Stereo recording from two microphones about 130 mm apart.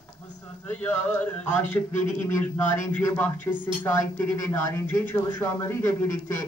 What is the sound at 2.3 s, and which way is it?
Speech, 15° left (ahead or behind).